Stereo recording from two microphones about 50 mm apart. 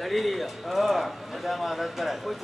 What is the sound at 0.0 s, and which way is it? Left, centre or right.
Speech, centre.